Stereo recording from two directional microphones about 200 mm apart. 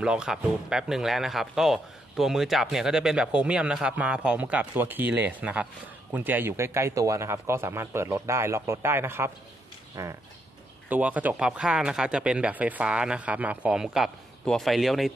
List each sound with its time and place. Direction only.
0.0 s speech: 5° right (ahead or behind)